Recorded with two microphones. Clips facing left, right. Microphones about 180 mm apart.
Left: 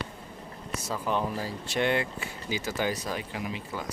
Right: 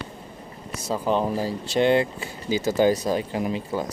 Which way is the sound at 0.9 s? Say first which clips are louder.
Right 7 dB; 30° right (ahead or behind).